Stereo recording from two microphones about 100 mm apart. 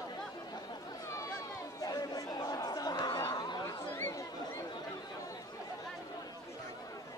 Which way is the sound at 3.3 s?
45° left (ahead or behind).